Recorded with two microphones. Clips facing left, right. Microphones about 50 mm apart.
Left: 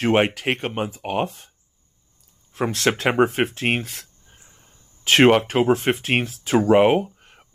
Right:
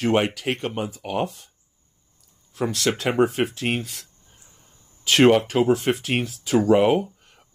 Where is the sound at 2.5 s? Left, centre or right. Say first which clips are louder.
Left 2 dB; left.